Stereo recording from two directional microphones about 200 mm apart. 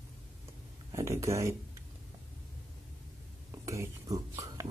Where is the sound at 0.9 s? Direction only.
15° right (ahead or behind).